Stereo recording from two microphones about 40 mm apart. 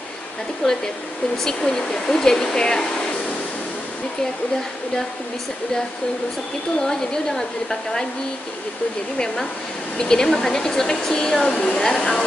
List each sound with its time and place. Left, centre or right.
0.6 s speech: centre
6.8 s speech: centre
9.2 s speech: centre
11.9 s speech: centre